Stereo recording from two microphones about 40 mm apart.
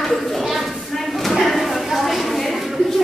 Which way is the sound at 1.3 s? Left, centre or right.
Centre.